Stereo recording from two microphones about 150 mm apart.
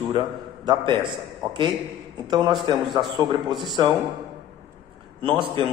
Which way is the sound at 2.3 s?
30° right (ahead or behind).